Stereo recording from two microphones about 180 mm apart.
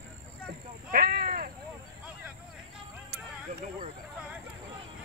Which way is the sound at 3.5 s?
40° right (ahead or behind).